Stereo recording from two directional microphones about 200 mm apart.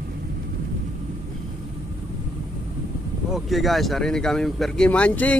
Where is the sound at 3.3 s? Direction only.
Centre (ahead or behind).